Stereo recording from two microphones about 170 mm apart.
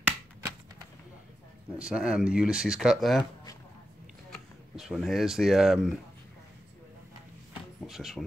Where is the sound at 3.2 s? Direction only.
25° left (ahead or behind).